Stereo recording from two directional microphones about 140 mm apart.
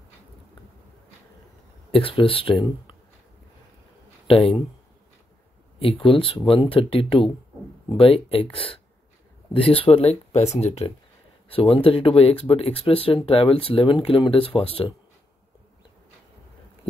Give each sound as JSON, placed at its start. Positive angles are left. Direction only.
{"t": 1.9, "sound": "speech", "side_deg": 40}
{"t": 4.3, "sound": "speech", "side_deg": 40}
{"t": 5.8, "sound": "speech", "side_deg": 40}
{"t": 9.8, "sound": "speech", "side_deg": 45}